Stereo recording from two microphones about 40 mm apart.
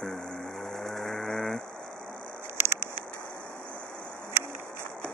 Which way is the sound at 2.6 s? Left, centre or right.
Right.